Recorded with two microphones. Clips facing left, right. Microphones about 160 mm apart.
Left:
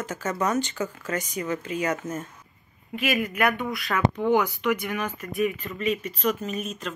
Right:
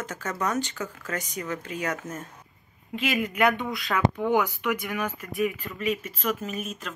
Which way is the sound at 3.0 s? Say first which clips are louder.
Even; 20° right (ahead or behind).